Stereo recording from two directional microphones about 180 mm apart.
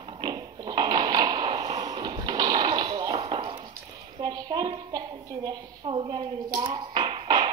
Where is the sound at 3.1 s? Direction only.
30° right (ahead or behind).